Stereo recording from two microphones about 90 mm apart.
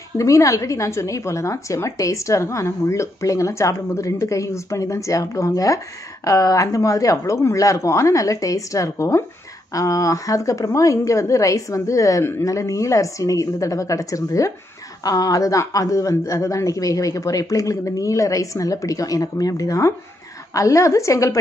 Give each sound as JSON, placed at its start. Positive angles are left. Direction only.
{"t": 0.2, "sound": "a woman's voice", "side_deg": 35}